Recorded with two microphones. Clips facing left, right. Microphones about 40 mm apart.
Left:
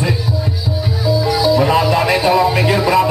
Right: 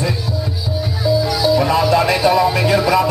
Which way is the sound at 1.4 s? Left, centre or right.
Centre.